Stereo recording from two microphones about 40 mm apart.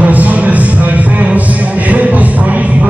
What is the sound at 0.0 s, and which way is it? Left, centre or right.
Music, right.